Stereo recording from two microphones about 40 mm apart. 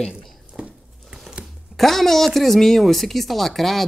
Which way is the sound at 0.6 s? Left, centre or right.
Right.